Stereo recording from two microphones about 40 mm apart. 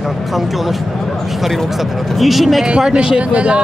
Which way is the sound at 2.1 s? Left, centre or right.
Centre.